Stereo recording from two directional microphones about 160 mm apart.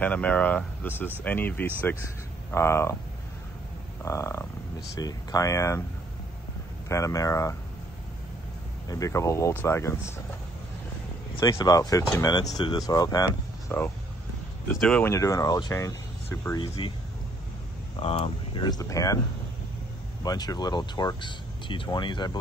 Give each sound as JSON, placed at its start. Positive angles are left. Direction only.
{"t": 0.0, "sound": "speech", "side_deg": 10}
{"t": 4.0, "sound": "frog", "side_deg": 20}
{"t": 4.9, "sound": "speech", "side_deg": 20}
{"t": 6.9, "sound": "speech", "side_deg": 20}
{"t": 8.8, "sound": "speech", "side_deg": 20}
{"t": 11.3, "sound": "speech", "side_deg": 25}
{"t": 14.8, "sound": "speech", "side_deg": 5}
{"t": 15.0, "sound": "speech", "side_deg": 20}
{"t": 16.6, "sound": "speech", "side_deg": 35}
{"t": 17.9, "sound": "speech", "side_deg": 35}
{"t": 20.2, "sound": "speech", "side_deg": 25}